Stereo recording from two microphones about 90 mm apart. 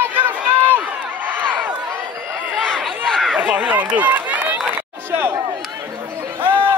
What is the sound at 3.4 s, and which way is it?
Run, 15° right (ahead or behind).